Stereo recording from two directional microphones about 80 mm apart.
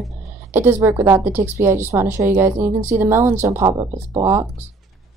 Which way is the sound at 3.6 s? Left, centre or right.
Right.